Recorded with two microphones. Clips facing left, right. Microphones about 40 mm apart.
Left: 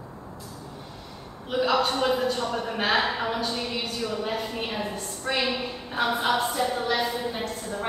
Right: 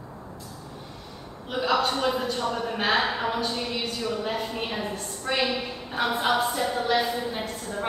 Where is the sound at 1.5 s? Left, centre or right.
Centre.